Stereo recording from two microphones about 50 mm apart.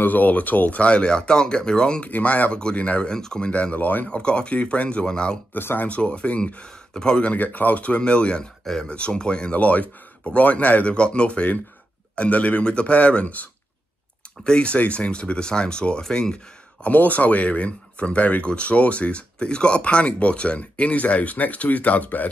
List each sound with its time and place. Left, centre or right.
0.0 s speech: left; by 2.0 s centre
2.0 s speech: left
3.7 s speech: left
4.1 s speech: centre
5.5 s speech: left
5.9 s speech: left
7.3 s speech: left; by 16.3 s centre
16.8 s speech: left